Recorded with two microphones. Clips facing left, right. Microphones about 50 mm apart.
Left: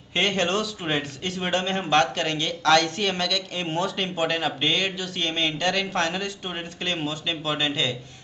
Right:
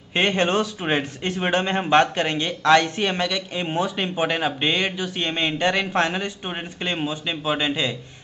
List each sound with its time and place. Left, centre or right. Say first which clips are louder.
0.1 s speech: right 3 dB; centre